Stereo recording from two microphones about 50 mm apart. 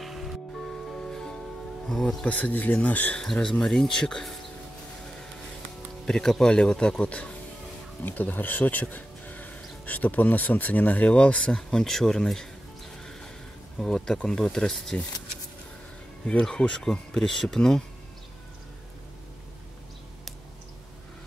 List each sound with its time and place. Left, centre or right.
0.0 s music: centre
1.9 s speech: centre
2.2 s speech: left
3.2 s speech: centre
6.0 s speech: centre
8.0 s speech: left; by 12.2 s centre
13.7 s speech: centre
16.4 s speech: centre